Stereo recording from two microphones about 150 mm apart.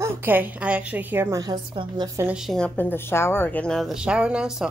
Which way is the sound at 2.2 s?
5° right (ahead or behind).